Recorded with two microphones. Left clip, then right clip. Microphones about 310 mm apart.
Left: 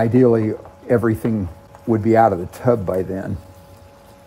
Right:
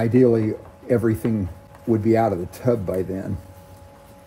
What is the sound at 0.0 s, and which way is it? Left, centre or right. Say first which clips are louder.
Speech: left 3 dB; centre.